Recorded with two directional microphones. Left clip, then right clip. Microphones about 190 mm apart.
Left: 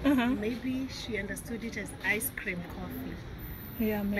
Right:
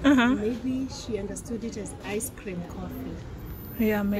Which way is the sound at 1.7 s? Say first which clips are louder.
Left 6 dB; 20° right (ahead or behind).